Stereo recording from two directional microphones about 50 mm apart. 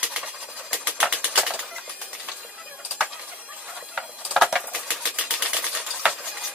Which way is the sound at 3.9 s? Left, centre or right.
Centre.